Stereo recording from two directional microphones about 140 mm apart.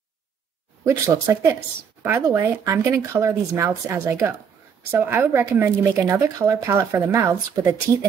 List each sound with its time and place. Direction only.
0.8 s speech: 20° right (ahead or behind)